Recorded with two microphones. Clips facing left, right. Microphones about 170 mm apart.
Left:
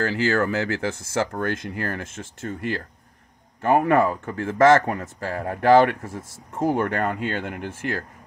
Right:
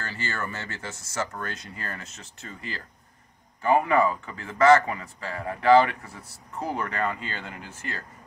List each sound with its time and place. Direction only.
0.0 s speech: 70° left (ahead or behind)
1.6 s speech: 65° left (ahead or behind)